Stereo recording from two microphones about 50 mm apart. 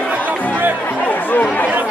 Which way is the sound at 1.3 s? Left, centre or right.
Left.